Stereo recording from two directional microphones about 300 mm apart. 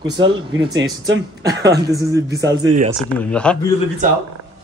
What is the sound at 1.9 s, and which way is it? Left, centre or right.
Speech, centre.